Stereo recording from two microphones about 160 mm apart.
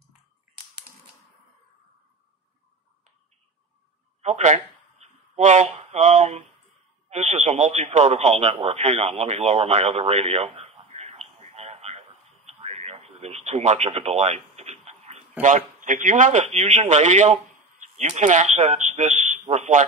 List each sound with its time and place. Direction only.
4.2 s a sound: 45° right (ahead or behind)
7.1 s speech: 40° right (ahead or behind)
12.5 s radio: 40° right (ahead or behind)
15.4 s a man's voice: 50° right (ahead or behind)